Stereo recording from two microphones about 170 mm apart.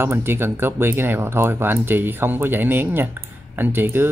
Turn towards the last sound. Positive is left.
turn(degrees=-10)  # may be behind; listen again after turning